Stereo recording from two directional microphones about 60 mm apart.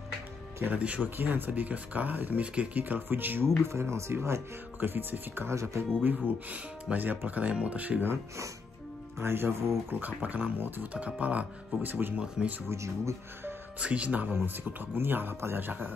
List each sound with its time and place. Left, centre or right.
0.7 s speech: right
1.1 s speech: right
2.8 s speech: right
3.6 s speech: right
4.7 s speech: right
5.5 s speech: right
6.2 s speech: right
9.2 s speech: right
9.9 s speech: right
12.2 s speech: centre
12.6 s speech: right
13.7 s speech: right
14.3 s speech: right